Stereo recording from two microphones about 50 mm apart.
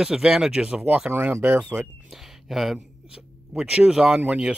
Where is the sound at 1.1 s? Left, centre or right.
Right.